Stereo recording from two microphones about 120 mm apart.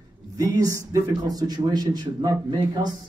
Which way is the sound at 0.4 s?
30° right (ahead or behind).